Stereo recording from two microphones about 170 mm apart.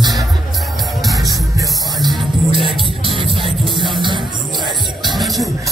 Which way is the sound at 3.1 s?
30° right (ahead or behind).